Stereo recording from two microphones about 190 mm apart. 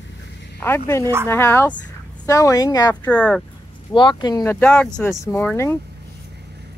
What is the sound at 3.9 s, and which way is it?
Speech, 25° left (ahead or behind).